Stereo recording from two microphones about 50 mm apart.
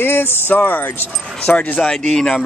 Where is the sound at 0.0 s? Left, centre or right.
Left.